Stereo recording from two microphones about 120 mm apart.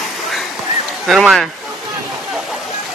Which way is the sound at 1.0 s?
Centre (ahead or behind).